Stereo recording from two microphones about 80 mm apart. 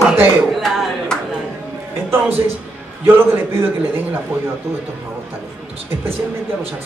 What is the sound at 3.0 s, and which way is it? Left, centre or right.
A man's voice, right.